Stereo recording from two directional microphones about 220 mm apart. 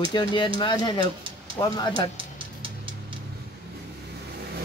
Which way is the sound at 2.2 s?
25° right (ahead or behind).